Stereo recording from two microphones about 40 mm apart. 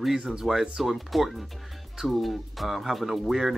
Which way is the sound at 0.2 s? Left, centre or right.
Right.